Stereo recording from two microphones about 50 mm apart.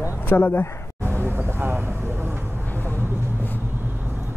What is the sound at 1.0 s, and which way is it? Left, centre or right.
Vehicle, right.